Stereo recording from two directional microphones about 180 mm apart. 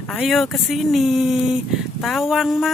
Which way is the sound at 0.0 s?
5° left (ahead or behind).